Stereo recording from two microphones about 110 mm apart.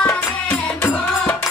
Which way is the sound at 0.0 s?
15° left (ahead or behind).